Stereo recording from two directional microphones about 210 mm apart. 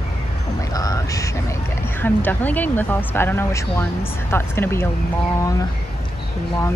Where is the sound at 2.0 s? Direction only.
10° left (ahead or behind).